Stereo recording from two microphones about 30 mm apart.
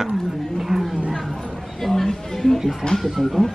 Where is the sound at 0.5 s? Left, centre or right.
Centre.